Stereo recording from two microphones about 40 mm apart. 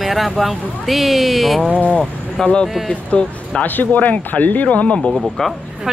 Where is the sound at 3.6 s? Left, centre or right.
Left.